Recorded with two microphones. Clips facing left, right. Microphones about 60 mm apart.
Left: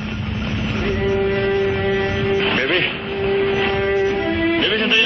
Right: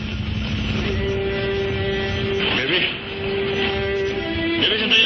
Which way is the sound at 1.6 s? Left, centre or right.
Left.